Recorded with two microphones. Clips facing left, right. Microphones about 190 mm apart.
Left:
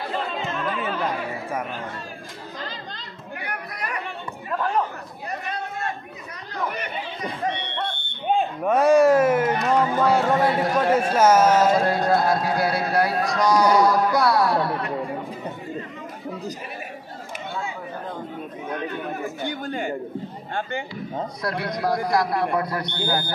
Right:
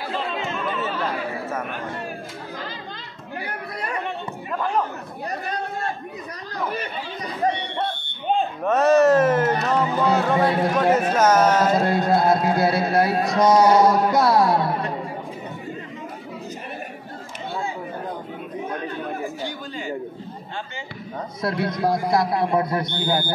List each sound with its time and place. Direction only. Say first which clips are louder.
0.8 s music: even; 10° left (ahead or behind)
3.4 s chatter: right 1 dB; 30° right (ahead or behind)
5.5 s chatter: right 1 dB; 35° right (ahead or behind)
8.3 s a man's voice: even; 10° left (ahead or behind)
11.8 s music: right 1 dB; 25° right (ahead or behind)
19.4 s a sound: left 3 dB; 55° left (ahead or behind)
21.4 s music: right 6 dB; 25° right (ahead or behind)